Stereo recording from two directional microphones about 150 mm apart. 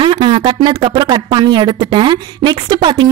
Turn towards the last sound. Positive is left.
turn(degrees=-30)  # may be behind; listen again after turning